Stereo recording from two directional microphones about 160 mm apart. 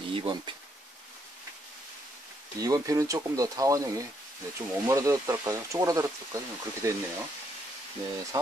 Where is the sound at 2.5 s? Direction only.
20° right (ahead or behind).